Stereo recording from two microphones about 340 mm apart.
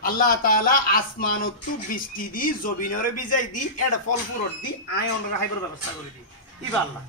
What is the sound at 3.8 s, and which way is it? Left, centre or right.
Speech, left.